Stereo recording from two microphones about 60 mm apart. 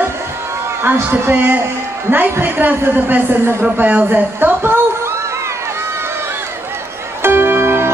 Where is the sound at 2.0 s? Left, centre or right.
Right.